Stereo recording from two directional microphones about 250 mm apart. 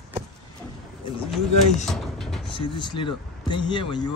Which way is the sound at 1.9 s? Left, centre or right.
Centre.